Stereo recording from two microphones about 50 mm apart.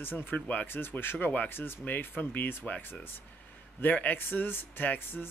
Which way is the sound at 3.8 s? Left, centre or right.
Left.